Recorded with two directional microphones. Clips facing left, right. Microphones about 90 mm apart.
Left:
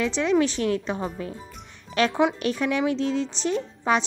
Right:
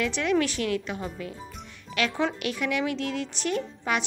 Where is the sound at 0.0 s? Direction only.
25° left (ahead or behind).